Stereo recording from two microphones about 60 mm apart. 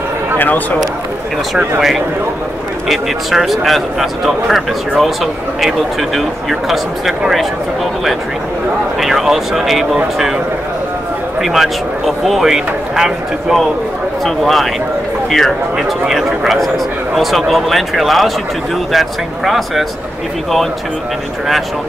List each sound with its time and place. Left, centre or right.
0.4 s speech: left
1.8 s speech: centre
11.4 s speech: centre